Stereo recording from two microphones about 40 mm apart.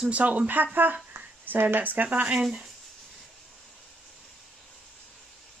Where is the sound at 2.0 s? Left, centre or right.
Right.